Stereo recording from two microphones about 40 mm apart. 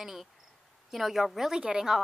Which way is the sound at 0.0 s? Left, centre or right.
Centre.